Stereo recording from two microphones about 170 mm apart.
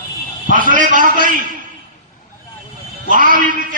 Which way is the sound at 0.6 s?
50° right (ahead or behind).